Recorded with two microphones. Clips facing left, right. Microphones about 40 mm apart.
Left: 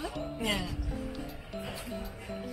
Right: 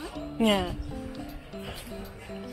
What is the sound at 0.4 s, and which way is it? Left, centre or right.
Speech, right.